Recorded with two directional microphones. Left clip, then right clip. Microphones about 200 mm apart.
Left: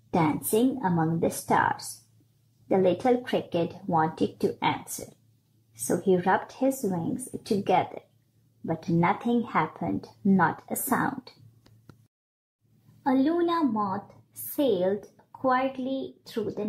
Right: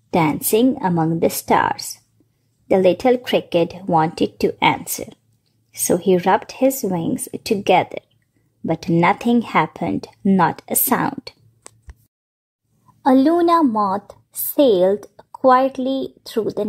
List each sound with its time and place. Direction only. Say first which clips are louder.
0.1 s speech: right 8 dB; 25° right (ahead or behind)
2.7 s speech: right 8 dB; 25° right (ahead or behind)
13.0 s speech: right 10 dB; 35° right (ahead or behind)